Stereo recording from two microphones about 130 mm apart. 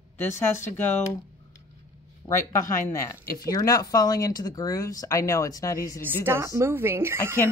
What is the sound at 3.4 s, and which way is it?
Speech, 30° left (ahead or behind).